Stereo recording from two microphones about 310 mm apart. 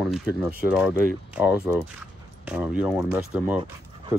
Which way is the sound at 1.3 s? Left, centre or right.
Centre.